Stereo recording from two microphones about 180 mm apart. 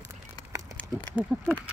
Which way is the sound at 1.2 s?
10° right (ahead or behind).